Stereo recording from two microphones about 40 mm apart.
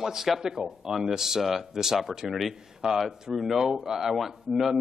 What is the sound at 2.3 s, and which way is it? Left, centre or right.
A man's voice, centre.